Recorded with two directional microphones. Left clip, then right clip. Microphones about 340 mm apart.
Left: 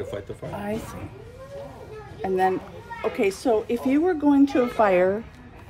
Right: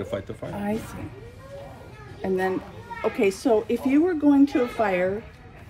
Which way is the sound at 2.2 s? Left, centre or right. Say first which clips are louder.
Left 3 dB; centre.